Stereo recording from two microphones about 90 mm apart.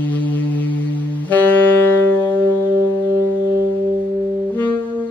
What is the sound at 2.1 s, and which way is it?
Music, 20° left (ahead or behind).